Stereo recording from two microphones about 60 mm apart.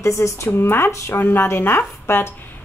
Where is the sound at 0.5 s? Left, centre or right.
Left.